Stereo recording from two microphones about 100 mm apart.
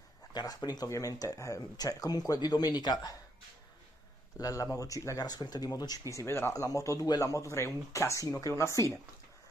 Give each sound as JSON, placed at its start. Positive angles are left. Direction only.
{"t": 0.3, "sound": "speech", "side_deg": 45}
{"t": 4.4, "sound": "speech", "side_deg": 35}